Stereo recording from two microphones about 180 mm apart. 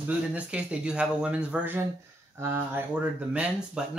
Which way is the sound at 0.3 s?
5° right (ahead or behind).